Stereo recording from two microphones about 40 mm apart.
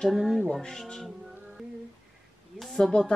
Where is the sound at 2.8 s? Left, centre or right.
Left.